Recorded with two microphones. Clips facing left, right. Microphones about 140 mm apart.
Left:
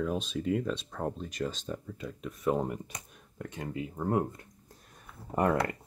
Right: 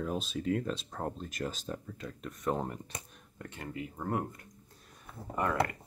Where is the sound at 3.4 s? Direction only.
15° left (ahead or behind).